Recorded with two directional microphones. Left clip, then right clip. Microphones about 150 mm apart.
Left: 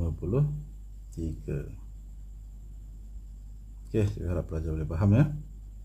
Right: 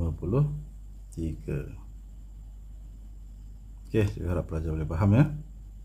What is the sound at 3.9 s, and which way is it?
Speech, 15° right (ahead or behind).